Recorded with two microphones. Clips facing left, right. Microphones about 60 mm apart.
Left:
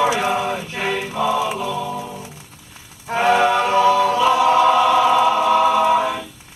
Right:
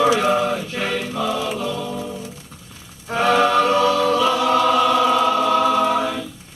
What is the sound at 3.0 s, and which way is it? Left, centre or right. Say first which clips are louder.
Music: left 1 dB; left.